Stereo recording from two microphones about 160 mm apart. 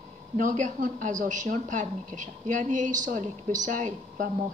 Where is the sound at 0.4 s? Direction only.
55° right (ahead or behind).